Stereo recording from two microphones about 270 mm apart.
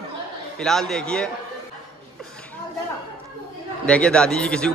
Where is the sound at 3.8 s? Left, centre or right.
Centre.